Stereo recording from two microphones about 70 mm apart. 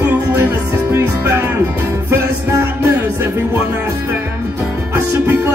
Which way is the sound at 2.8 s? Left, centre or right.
Right.